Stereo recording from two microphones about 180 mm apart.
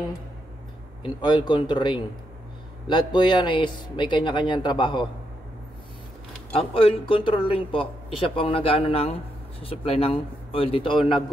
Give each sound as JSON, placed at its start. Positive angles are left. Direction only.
{"t": 1.0, "sound": "speech", "side_deg": 25}
{"t": 6.5, "sound": "speech", "side_deg": 30}